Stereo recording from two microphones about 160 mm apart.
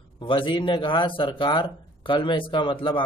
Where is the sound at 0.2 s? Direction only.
30° left (ahead or behind).